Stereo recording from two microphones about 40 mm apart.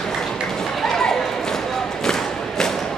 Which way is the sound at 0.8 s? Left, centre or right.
Centre.